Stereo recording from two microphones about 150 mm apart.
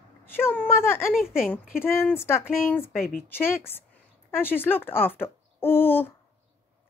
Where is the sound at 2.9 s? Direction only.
75° left (ahead or behind).